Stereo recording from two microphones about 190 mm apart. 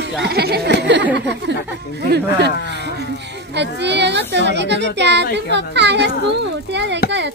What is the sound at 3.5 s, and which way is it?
Speech, 65° right (ahead or behind).